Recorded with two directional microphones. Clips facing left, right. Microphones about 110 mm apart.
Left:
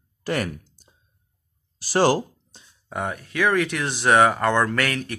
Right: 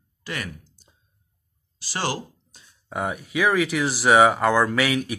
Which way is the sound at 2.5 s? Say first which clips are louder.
Left 2 dB; 30° left (ahead or behind).